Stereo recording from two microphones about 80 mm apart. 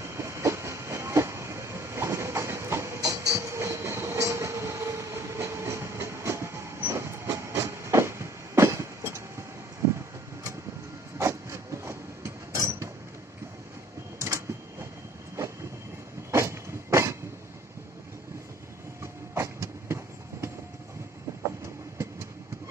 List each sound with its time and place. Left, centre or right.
0.0 s train: right
11.1 s train: right
14.2 s printer: right
16.3 s train: right
19.3 s train: right